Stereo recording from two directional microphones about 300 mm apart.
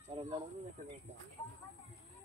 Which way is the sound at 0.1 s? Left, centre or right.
Centre.